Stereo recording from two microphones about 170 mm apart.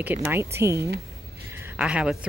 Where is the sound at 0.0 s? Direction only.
10° right (ahead or behind).